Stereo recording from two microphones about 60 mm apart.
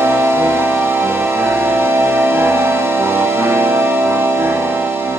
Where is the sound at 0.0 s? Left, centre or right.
Right.